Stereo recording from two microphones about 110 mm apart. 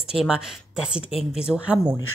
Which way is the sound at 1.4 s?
10° right (ahead or behind).